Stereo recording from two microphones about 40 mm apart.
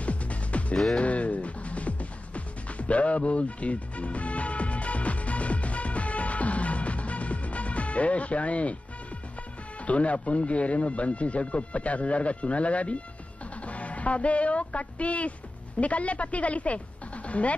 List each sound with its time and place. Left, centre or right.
0.0 s music: left
9.8 s speech: left
13.7 s music: left
15.8 s speech: left